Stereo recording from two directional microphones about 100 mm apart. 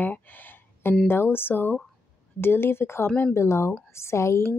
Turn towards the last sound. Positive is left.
turn(degrees=30)  # may be behind; listen again after turning